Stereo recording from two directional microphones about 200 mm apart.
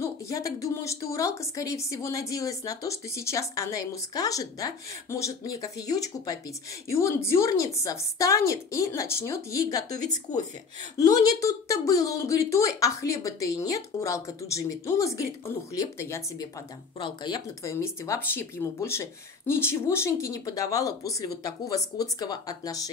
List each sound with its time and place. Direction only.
0.0 s speech: 15° left (ahead or behind)